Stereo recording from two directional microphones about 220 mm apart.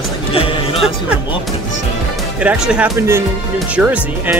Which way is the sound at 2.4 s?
5° right (ahead or behind).